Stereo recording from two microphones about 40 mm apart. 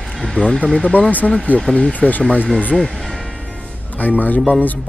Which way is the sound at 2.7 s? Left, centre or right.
Centre.